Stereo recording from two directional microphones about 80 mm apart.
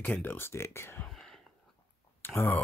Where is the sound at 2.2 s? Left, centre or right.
Left.